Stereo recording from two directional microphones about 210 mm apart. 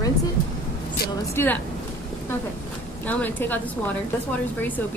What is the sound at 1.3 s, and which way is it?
Speech, 10° left (ahead or behind).